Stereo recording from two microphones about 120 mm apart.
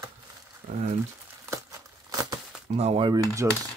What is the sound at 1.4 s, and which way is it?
Crumpling, 25° right (ahead or behind).